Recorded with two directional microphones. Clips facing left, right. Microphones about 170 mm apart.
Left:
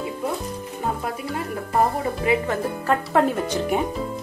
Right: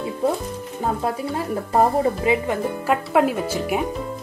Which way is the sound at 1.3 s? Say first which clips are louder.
Right 3 dB; 30° right (ahead or behind).